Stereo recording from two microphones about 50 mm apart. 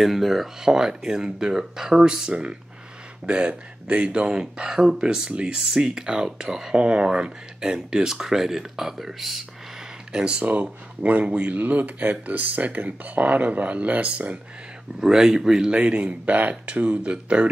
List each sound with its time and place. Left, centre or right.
0.0 s speech: centre
10.1 s speech: centre
15.0 s speech: centre
15.8 s speech: right